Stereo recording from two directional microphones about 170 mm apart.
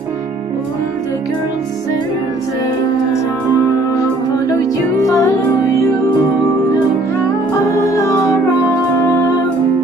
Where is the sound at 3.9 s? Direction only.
20° left (ahead or behind).